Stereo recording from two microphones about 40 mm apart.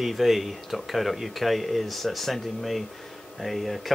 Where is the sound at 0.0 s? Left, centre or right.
Centre.